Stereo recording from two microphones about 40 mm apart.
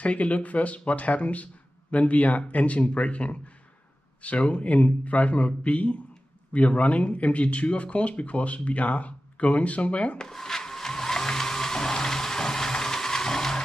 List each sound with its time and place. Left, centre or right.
0.0 s speech: left
10.2 s blender: centre